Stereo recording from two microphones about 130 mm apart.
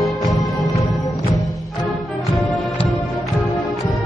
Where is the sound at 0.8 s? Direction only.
25° left (ahead or behind).